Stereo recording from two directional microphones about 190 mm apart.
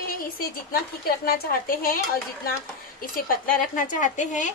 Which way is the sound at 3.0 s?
50° left (ahead or behind).